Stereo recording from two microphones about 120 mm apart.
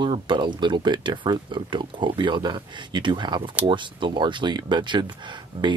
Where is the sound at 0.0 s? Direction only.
40° right (ahead or behind).